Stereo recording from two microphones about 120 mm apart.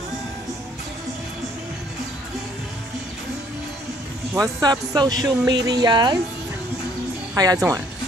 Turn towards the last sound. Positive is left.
turn(degrees=-30)  # may be behind; listen again after turning